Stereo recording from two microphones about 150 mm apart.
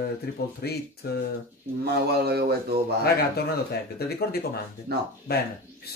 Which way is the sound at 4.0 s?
90° left.